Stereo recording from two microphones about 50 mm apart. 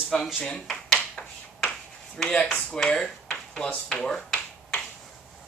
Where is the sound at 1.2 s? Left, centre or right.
Centre.